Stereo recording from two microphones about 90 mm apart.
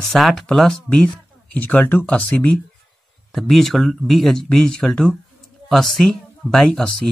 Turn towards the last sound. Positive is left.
turn(degrees=5)  # may be behind; listen again after turning